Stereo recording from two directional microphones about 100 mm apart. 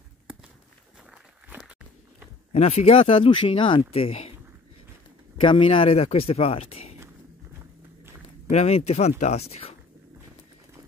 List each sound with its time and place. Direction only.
2.5 s speech: 90° left; by 3.8 s 60° left (ahead or behind)
3.9 s speech: 80° left
5.4 s speech: 60° left (ahead or behind); by 7.0 s 85° left
8.6 s speech: 90° left